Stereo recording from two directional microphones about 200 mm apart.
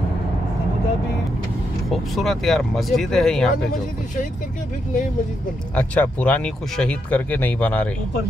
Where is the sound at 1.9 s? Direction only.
Centre (ahead or behind).